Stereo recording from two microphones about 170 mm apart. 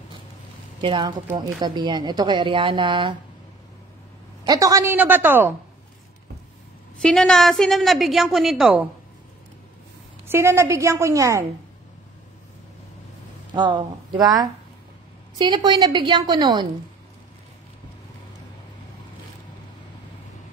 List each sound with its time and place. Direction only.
0.7 s speech: 30° right (ahead or behind)
4.5 s a woman's voice: 20° right (ahead or behind)
7.0 s a woman's voice: 5° left (ahead or behind)
10.2 s a woman's voice: 15° right (ahead or behind)
13.5 s speech: 30° right (ahead or behind)
15.3 s speech: 25° right (ahead or behind)